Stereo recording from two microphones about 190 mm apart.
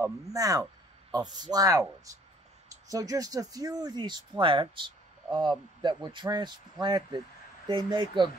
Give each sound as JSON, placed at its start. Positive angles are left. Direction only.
{"t": 0.0, "sound": "speech", "side_deg": -15}